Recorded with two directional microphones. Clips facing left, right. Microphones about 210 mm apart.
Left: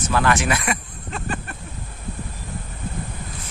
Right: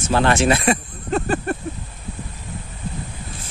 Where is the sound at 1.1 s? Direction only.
40° right (ahead or behind).